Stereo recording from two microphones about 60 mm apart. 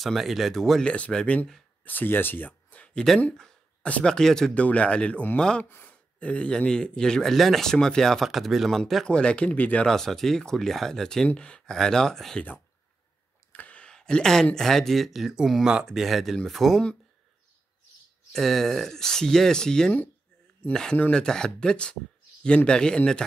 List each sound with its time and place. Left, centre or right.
0.0 s speech: centre
0.8 s speech: centre
1.9 s speech: left
4.1 s a man's voice: centre
4.6 s a man's voice: left; by 9.0 s centre
9.0 s a man's voice: centre
9.8 s a man's voice: centre
13.5 s a sound: left
13.9 s a man's voice: centre
18.3 s a man's voice: centre